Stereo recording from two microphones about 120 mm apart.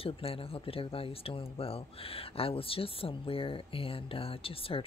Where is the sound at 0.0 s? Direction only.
50° left (ahead or behind).